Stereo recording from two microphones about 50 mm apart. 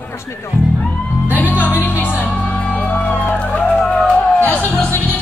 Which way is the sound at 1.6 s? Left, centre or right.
Left.